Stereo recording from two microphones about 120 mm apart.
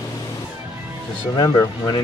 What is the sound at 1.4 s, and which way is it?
Speech, 25° left (ahead or behind).